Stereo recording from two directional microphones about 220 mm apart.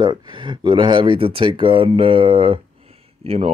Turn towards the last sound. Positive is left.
turn(degrees=-25)  # may be behind; listen again after turning